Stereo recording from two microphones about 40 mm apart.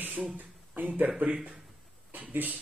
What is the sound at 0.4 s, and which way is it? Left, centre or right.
Speech, right.